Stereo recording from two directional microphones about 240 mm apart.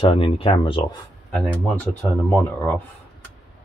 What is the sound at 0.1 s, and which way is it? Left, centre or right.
Speech, left.